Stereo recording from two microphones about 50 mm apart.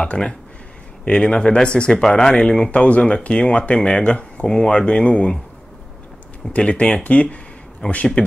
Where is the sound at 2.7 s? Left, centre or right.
Left.